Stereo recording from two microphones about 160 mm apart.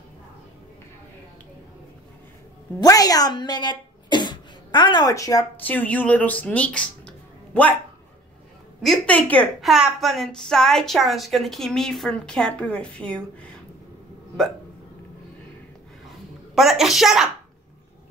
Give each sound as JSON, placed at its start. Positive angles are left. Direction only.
{"t": 2.8, "sound": "speech", "side_deg": 20}
{"t": 5.7, "sound": "speech", "side_deg": 10}
{"t": 8.8, "sound": "a woman's voice", "side_deg": 5}
{"t": 16.5, "sound": "a woman's voice", "side_deg": 0}